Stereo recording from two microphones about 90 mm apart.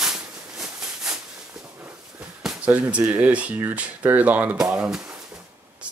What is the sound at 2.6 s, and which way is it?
Speech, 15° right (ahead or behind).